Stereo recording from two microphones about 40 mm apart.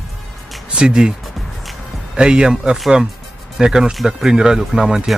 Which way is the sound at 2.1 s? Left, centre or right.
Right.